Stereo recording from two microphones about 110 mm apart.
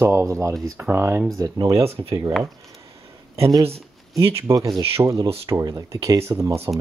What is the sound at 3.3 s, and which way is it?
Speech, 25° right (ahead or behind).